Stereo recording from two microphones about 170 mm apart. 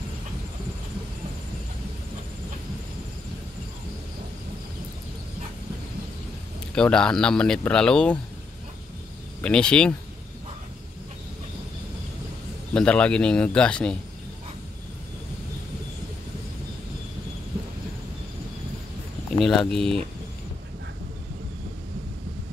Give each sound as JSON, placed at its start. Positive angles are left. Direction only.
{"t": 6.7, "sound": "a man's voice", "side_deg": 5}
{"t": 9.4, "sound": "a man's voice", "side_deg": 5}
{"t": 12.7, "sound": "a man's voice", "side_deg": 5}
{"t": 19.3, "sound": "a man's voice", "side_deg": 0}